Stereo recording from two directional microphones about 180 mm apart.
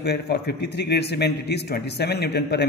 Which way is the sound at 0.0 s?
65° left (ahead or behind).